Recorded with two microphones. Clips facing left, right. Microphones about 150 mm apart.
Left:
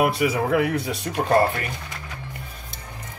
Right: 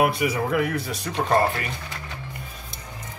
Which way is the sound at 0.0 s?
70° left (ahead or behind).